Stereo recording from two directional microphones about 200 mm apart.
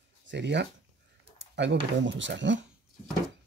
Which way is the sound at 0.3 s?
60° right (ahead or behind).